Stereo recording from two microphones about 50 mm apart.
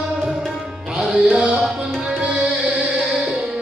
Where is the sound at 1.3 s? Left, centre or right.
Right.